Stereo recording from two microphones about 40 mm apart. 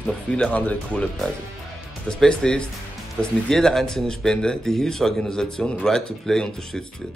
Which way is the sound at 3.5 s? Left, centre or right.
Centre.